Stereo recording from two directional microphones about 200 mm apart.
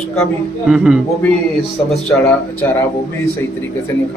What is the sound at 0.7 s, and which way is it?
Speech, 5° right (ahead or behind).